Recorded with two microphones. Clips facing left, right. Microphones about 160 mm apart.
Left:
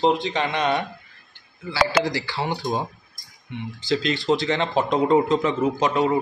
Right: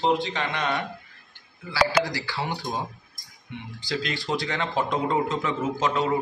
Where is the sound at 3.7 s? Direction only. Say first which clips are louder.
Left 6 dB; 25° left (ahead or behind).